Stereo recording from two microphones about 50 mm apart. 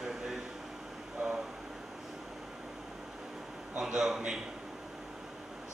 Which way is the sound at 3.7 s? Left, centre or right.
Centre.